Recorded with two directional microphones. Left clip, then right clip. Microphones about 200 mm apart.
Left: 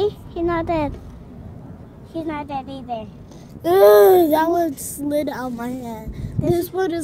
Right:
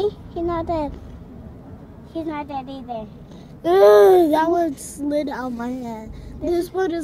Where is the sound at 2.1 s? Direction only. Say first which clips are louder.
Left 1 dB; 30° left (ahead or behind).